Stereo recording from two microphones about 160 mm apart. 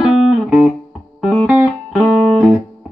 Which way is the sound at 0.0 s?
5° right (ahead or behind).